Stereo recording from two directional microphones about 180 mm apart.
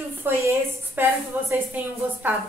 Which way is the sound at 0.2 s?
10° right (ahead or behind).